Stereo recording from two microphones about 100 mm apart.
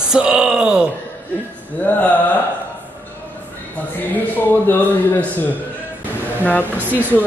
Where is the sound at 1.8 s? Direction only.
15° left (ahead or behind).